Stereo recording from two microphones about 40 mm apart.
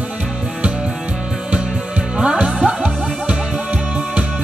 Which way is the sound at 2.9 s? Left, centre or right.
Centre.